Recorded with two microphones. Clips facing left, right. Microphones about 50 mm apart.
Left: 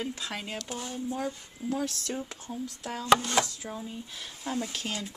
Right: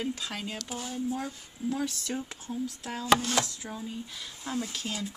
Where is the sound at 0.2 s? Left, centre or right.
Centre.